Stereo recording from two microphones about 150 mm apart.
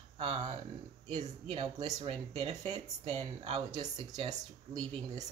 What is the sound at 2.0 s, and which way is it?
Speech, 40° right (ahead or behind).